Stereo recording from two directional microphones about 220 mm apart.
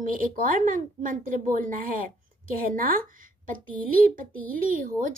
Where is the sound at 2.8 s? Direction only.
40° right (ahead or behind).